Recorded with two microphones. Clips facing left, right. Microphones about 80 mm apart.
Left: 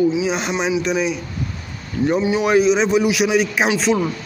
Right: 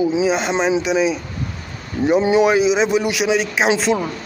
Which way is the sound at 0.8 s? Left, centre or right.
Centre.